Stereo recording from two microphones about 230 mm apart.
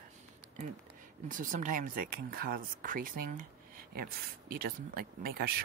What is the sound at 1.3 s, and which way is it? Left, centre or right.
Speech, right.